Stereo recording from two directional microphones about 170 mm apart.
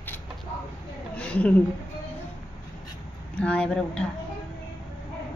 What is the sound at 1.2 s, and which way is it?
Speech, 10° left (ahead or behind).